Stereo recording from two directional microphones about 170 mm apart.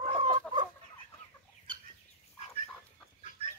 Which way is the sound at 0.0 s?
30° right (ahead or behind).